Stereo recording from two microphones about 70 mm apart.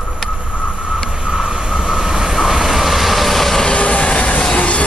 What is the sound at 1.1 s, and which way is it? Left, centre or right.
Train, centre.